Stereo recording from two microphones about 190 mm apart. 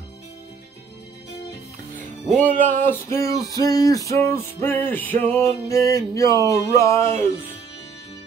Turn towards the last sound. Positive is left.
turn(degrees=15)  # may be behind; listen again after turning